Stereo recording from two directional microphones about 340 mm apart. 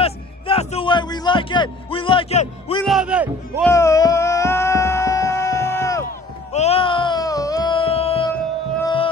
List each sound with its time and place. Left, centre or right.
0.0 s a man's voice: centre
2.8 s a man's voice: centre
3.7 s music: centre